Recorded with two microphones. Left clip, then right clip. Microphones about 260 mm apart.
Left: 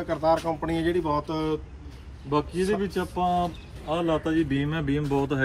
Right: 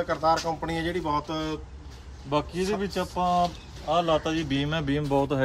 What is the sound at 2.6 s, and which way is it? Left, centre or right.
Speech, centre.